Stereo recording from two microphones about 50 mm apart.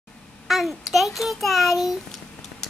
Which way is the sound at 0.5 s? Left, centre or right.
Centre.